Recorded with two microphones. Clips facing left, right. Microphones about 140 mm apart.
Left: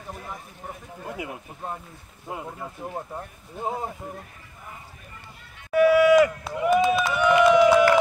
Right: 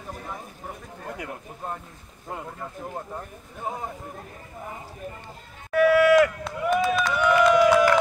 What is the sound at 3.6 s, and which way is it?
Speech, 25° left (ahead or behind).